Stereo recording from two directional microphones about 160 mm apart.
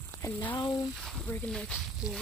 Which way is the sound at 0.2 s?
10° left (ahead or behind).